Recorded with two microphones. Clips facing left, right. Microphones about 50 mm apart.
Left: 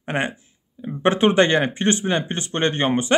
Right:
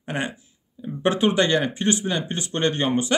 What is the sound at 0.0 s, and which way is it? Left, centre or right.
Speech, left.